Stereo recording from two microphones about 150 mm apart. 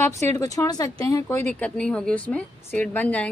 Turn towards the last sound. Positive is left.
turn(degrees=10)  # may be behind; listen again after turning